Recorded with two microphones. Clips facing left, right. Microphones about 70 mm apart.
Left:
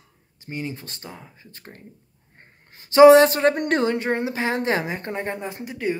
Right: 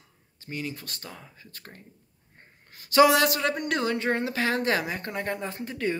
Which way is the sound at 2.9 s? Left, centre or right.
Left.